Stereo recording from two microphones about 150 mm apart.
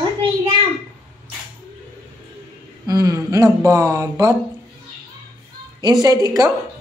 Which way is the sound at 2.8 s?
25° right (ahead or behind).